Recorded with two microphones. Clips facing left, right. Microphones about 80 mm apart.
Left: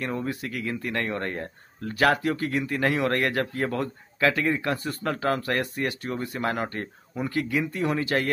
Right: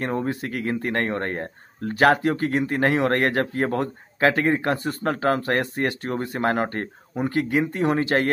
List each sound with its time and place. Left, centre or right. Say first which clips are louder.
0.0 s speech: right 4 dB; right